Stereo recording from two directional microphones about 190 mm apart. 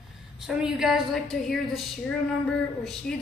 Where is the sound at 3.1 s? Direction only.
5° left (ahead or behind).